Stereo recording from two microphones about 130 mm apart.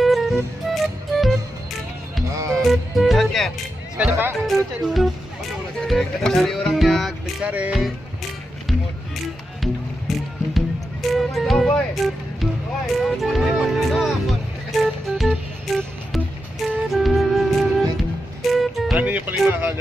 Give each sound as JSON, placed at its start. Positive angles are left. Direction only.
{"t": 0.0, "sound": "music", "side_deg": 0}
{"t": 2.2, "sound": "music", "side_deg": -25}
{"t": 2.5, "sound": "music", "side_deg": 0}
{"t": 4.0, "sound": "speech", "side_deg": -10}
{"t": 4.5, "sound": "music", "side_deg": 0}
{"t": 7.4, "sound": "speech", "side_deg": -10}
{"t": 9.6, "sound": "music", "side_deg": 0}
{"t": 18.9, "sound": "speech", "side_deg": -15}